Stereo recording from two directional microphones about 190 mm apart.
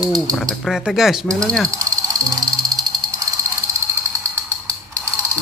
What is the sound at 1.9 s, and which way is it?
Music, 20° right (ahead or behind).